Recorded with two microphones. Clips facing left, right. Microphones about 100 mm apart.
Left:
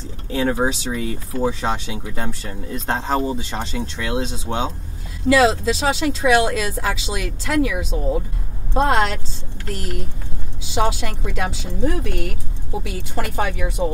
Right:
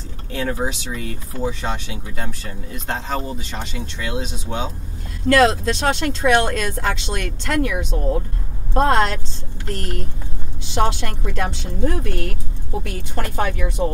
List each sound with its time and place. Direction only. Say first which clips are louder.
0.3 s speech: left 4 dB; 30° left (ahead or behind)
5.2 s a woman's voice: even; centre (ahead or behind)